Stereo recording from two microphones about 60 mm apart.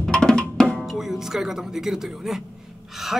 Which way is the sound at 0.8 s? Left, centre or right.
Centre.